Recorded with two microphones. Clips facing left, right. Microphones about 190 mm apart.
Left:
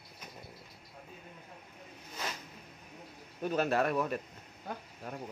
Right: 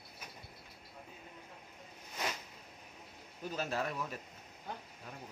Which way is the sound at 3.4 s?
65° left (ahead or behind).